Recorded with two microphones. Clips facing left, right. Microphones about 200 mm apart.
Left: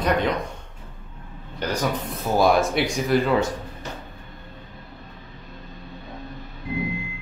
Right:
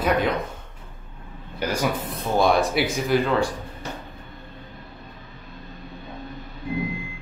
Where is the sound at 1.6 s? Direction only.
10° right (ahead or behind).